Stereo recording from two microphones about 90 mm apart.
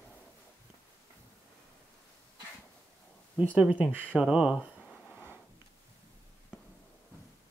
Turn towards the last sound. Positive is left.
turn(degrees=-10)  # may be behind; listen again after turning